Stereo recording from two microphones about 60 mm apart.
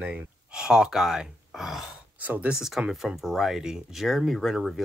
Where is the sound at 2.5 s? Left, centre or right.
Centre.